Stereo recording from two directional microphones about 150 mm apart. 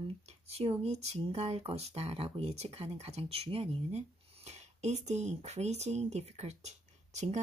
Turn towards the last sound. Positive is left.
turn(degrees=-50)  # may be behind; listen again after turning